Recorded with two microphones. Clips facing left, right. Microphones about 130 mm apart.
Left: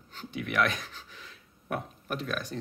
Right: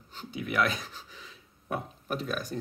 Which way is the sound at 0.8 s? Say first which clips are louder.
Right 1 dB; 5° right (ahead or behind).